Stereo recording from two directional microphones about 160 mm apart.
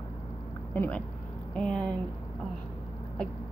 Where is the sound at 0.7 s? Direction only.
10° left (ahead or behind).